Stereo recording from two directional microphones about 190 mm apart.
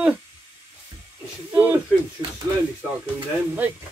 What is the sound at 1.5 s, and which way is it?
Speech, 10° right (ahead or behind).